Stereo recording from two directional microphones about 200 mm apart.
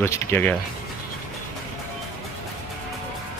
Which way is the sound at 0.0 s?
10° left (ahead or behind).